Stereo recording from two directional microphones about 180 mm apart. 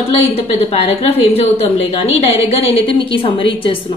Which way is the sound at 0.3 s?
35° left (ahead or behind).